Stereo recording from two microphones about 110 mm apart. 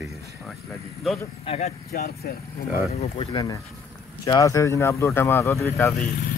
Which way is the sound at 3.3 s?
30° left (ahead or behind).